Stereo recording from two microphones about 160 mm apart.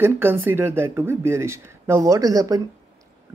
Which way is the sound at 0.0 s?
15° right (ahead or behind).